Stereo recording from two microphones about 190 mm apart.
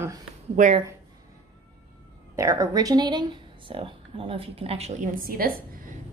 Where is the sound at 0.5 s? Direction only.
40° right (ahead or behind).